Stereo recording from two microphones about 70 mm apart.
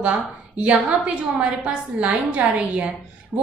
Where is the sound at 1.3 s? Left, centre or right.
Centre.